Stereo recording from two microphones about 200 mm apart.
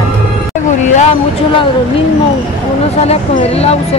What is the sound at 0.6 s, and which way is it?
Vehicle, 40° left (ahead or behind).